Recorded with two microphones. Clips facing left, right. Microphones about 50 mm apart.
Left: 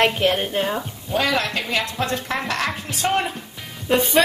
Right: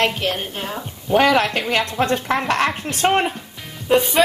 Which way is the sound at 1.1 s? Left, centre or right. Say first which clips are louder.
Right 6 dB; right.